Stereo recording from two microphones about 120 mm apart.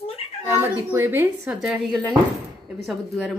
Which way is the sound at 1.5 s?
5° right (ahead or behind).